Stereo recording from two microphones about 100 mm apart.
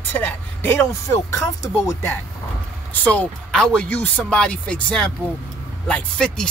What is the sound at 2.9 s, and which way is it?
Speech, 15° left (ahead or behind).